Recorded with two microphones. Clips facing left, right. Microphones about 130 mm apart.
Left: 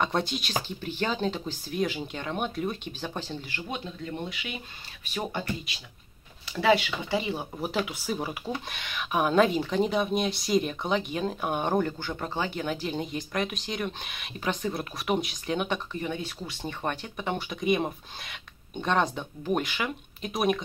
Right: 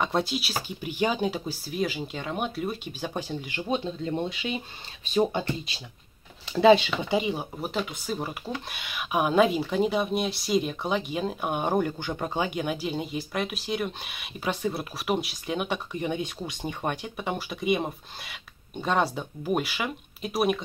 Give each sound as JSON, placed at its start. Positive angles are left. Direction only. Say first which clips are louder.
{"t": 0.0, "sound": "speech", "louder": "right 1 dB", "side_deg": -5}
{"t": 7.1, "sound": "speech", "louder": "right 3 dB", "side_deg": -15}
{"t": 7.5, "sound": "speech", "louder": "left 1 dB", "side_deg": 0}
{"t": 15.9, "sound": "speech", "louder": "right 3 dB", "side_deg": -20}